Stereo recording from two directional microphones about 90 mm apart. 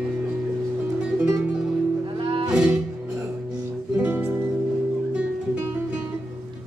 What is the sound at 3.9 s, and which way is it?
Music, 20° right (ahead or behind).